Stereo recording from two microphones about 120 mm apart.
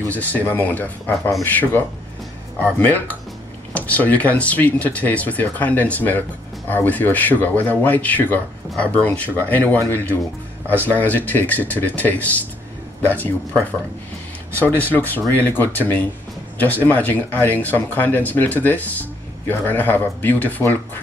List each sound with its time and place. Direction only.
0.1 s speech: 15° left (ahead or behind)